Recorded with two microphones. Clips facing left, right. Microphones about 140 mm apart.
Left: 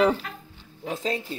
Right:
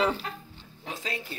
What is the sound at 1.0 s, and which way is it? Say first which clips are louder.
Speech: left 7 dB; 30° left (ahead or behind).